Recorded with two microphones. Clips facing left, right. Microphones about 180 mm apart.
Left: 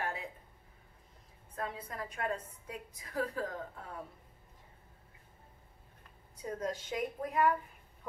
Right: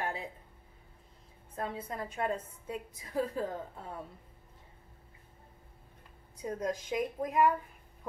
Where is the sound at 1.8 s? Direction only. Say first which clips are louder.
Right 5 dB; 25° right (ahead or behind).